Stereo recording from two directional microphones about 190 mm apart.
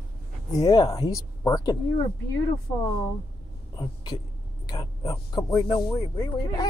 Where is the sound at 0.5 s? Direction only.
20° left (ahead or behind).